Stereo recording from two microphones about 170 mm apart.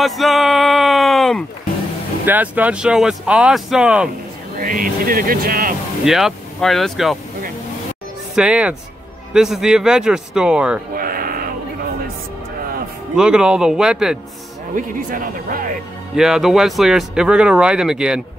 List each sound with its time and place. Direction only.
0.0 s a sound: centre (ahead or behind)
2.2 s speech: 10° right (ahead or behind)
4.6 s speech: 55° right (ahead or behind)
6.0 s speech: centre (ahead or behind)
8.4 s speech: 5° right (ahead or behind)
11.0 s a sound: 55° right (ahead or behind)
13.1 s speech: 5° right (ahead or behind)
14.8 s speech: 55° right (ahead or behind)
16.2 s speech: 5° right (ahead or behind)